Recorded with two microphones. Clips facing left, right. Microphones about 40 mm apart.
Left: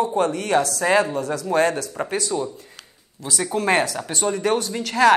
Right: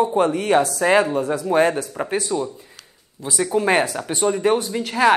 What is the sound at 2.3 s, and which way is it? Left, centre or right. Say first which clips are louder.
Speech: right 1 dB; centre.